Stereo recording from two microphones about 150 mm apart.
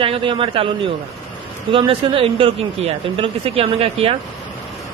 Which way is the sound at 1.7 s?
35° right (ahead or behind).